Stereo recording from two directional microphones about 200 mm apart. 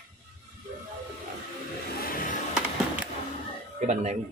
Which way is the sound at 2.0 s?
45° left (ahead or behind).